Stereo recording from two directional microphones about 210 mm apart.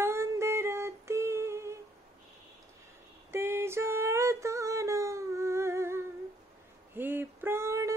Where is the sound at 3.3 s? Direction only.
10° right (ahead or behind).